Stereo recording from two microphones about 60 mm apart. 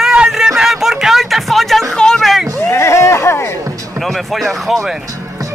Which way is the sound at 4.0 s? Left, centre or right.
Centre.